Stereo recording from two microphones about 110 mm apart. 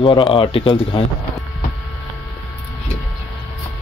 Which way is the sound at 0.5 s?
55° left (ahead or behind).